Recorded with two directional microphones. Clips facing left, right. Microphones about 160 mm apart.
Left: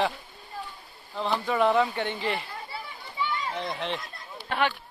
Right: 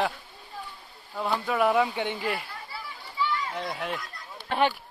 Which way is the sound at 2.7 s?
25° left (ahead or behind).